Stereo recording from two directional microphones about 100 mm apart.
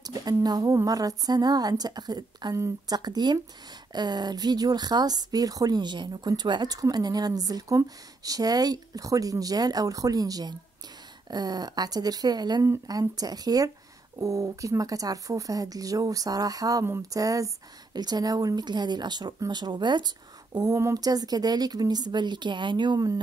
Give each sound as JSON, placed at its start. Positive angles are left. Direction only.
{"t": 0.0, "sound": "a woman's voice", "side_deg": -40}